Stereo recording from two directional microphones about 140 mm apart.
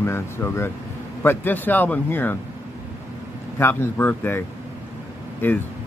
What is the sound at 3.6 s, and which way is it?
Speech, 15° left (ahead or behind).